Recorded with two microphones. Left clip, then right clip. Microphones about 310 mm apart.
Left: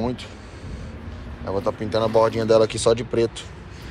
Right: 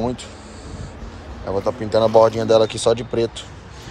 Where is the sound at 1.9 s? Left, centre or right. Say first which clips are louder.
Right 6 dB; centre.